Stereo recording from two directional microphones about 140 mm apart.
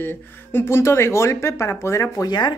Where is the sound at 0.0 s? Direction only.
15° left (ahead or behind).